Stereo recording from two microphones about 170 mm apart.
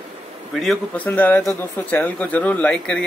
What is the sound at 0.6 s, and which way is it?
Speech, 5° left (ahead or behind).